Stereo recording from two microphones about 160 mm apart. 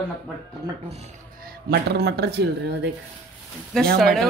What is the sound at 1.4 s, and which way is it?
Speech, 75° right (ahead or behind).